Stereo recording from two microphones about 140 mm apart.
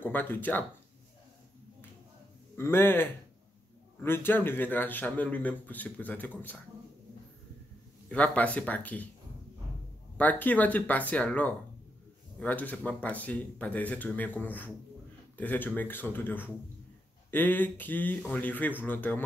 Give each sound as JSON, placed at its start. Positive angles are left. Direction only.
{"t": 0.0, "sound": "speech", "side_deg": 15}
{"t": 2.5, "sound": "speech", "side_deg": 15}
{"t": 8.1, "sound": "speech", "side_deg": 10}
{"t": 10.1, "sound": "speech", "side_deg": 10}